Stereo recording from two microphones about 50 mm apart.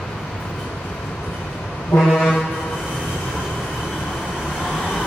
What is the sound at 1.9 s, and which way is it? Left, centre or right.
Vehicle, left.